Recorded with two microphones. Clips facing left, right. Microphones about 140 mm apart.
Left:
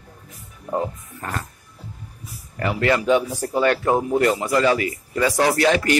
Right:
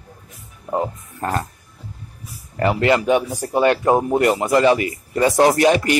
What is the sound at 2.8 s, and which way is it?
Speech, 20° right (ahead or behind).